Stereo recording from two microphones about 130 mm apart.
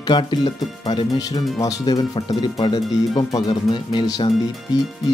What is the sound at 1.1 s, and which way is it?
Speech, 30° left (ahead or behind).